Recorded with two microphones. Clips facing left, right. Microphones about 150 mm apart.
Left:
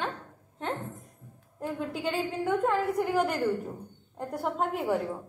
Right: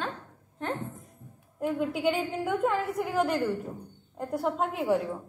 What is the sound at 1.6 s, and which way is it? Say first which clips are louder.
A woman's voice: right 5 dB; 10° right (ahead or behind).